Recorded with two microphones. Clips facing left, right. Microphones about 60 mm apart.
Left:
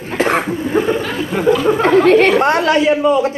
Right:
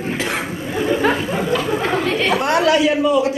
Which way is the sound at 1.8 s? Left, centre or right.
Left.